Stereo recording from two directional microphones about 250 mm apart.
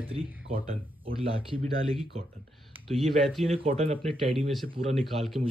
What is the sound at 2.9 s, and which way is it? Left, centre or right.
Speech, centre.